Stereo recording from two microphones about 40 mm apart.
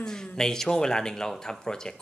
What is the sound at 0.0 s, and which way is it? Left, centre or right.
Speech, centre.